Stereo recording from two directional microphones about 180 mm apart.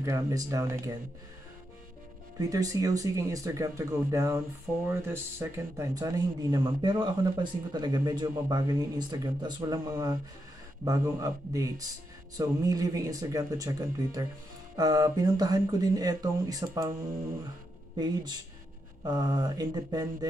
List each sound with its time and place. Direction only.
0.0 s speech: 20° right (ahead or behind)
2.3 s speech: 20° right (ahead or behind)
17.9 s speech: 20° right (ahead or behind)